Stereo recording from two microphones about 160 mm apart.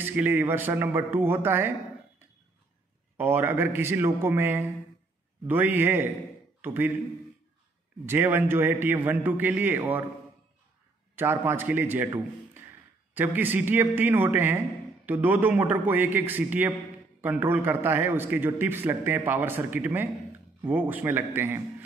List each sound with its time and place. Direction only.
0.0 s a man's voice: 10° right (ahead or behind)
3.2 s a man's voice: 15° right (ahead or behind)
8.0 s a man's voice: 15° right (ahead or behind)
11.1 s a man's voice: 15° right (ahead or behind)
13.1 s a man's voice: 10° right (ahead or behind)